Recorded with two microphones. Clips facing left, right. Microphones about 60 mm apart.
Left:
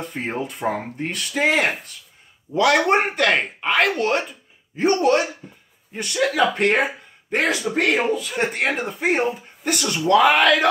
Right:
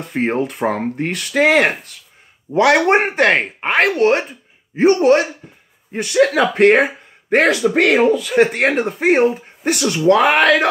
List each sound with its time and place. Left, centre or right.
0.1 s speech: right
2.5 s speech: right
6.1 s speech: right
7.4 s speech: right
8.6 s speech: right